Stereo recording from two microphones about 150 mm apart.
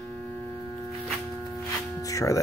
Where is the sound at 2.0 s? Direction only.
20° left (ahead or behind).